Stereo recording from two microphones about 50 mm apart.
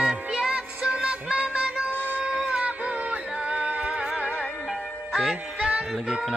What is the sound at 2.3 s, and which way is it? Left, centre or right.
Music, right.